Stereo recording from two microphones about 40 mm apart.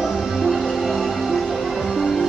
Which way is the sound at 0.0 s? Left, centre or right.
Centre.